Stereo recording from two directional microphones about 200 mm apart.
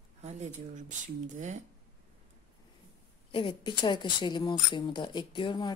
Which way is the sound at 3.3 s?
25° left (ahead or behind).